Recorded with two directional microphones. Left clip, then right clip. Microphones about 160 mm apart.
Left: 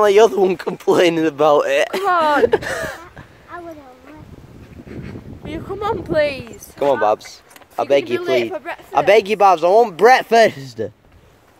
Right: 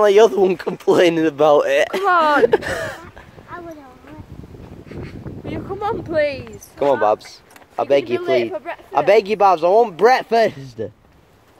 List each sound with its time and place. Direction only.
0.0 s speech: 5° left (ahead or behind)
5.5 s a sound: 30° left (ahead or behind)
6.1 s speech: 65° left (ahead or behind)
6.8 s speech: 5° left (ahead or behind)
8.2 s speech: 60° left (ahead or behind)
8.9 s speech: 15° left (ahead or behind); by 10.9 s 30° left (ahead or behind)